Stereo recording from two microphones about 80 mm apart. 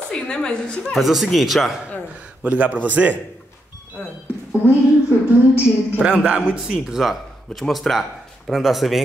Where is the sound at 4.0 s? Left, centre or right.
Left.